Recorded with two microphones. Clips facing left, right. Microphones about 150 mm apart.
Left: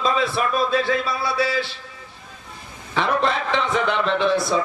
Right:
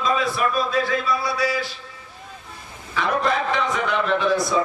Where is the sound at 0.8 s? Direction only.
30° left (ahead or behind).